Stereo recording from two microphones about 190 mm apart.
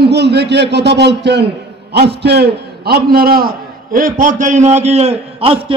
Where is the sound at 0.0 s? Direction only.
60° right (ahead or behind).